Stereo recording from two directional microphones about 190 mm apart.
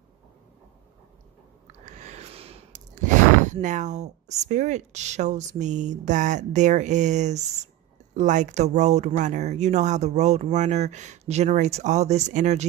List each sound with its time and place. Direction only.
1.9 s speech: 40° right (ahead or behind)